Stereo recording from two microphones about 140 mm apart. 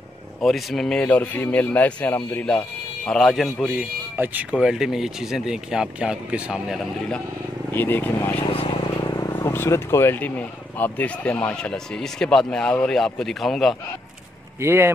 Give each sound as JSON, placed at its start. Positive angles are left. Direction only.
{"t": 0.4, "sound": "a man's voice", "side_deg": 0}
{"t": 3.7, "sound": "speech", "side_deg": -10}
{"t": 7.7, "sound": "a man's voice", "side_deg": 15}
{"t": 8.5, "sound": "vehicle", "side_deg": 40}
{"t": 9.3, "sound": "speech", "side_deg": 15}
{"t": 14.6, "sound": "speech", "side_deg": -20}